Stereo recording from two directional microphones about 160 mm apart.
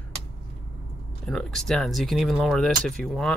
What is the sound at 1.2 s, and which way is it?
Speech, 5° left (ahead or behind).